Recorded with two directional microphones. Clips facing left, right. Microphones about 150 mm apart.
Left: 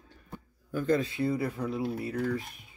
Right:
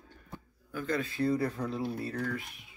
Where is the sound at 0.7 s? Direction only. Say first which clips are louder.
Left 6 dB; 40° left (ahead or behind).